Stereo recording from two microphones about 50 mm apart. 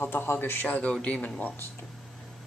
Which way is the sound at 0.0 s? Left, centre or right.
Left.